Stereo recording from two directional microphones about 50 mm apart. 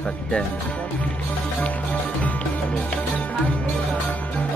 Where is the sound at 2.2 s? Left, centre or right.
Left.